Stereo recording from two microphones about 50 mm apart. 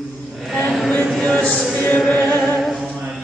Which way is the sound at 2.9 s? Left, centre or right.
Centre.